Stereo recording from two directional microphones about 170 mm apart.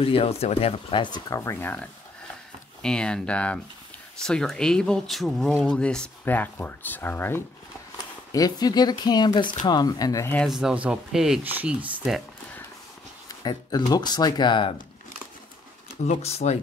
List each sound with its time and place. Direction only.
0.0 s speech: 35° left (ahead or behind)
10.3 s speech: centre (ahead or behind)
13.4 s speech: 25° left (ahead or behind)
16.1 s speech: 40° left (ahead or behind)